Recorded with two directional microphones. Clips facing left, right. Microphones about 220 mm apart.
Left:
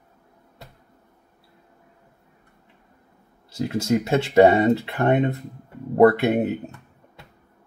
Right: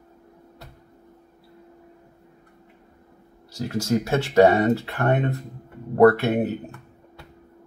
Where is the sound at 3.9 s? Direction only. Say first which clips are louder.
Left 2 dB; 20° left (ahead or behind).